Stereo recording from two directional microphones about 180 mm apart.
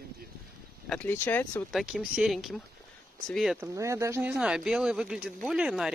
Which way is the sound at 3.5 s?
15° right (ahead or behind).